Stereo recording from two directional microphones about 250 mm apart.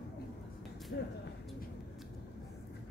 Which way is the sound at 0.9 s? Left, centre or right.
Left.